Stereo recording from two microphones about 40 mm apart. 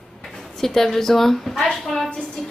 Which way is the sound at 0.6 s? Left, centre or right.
Centre.